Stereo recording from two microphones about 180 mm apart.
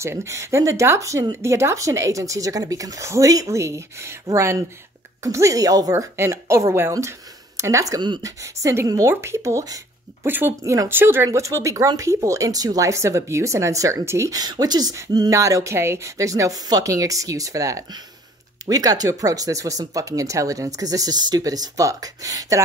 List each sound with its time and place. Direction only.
0.0 s speech: 15° right (ahead or behind)